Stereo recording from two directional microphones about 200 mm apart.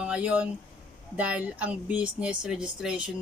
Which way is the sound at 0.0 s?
5° right (ahead or behind).